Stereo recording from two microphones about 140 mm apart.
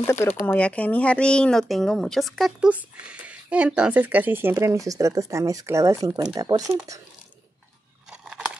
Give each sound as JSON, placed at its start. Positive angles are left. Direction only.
{"t": 0.0, "sound": "speech", "side_deg": 20}